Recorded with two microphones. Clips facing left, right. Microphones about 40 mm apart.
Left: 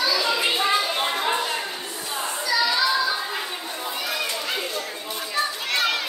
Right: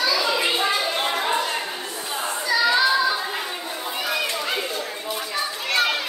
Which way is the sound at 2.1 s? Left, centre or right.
Centre.